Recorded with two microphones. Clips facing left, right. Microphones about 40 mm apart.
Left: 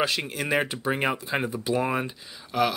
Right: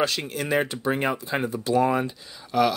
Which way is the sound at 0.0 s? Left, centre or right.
Centre.